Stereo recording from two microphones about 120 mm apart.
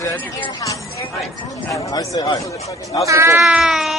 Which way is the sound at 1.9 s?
35° left (ahead or behind).